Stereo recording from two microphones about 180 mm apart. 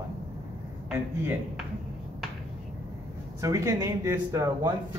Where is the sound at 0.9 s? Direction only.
10° right (ahead or behind).